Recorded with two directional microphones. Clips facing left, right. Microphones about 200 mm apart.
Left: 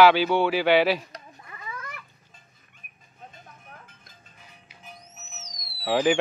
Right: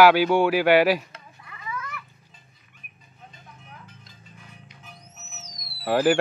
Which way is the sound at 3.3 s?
50° left (ahead or behind).